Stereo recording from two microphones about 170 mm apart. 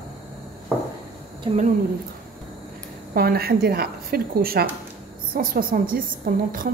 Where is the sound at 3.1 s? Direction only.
60° right (ahead or behind).